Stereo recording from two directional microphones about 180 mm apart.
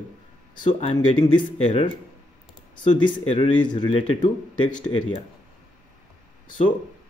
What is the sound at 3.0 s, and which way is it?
A man's voice, 25° left (ahead or behind).